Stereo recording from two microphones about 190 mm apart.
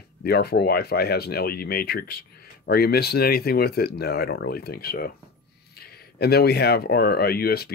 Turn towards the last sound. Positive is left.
turn(degrees=55)  # may be behind; listen again after turning